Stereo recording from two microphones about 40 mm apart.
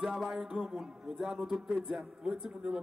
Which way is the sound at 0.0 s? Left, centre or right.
Centre.